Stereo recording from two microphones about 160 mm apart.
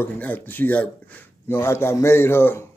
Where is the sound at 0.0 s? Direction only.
10° left (ahead or behind).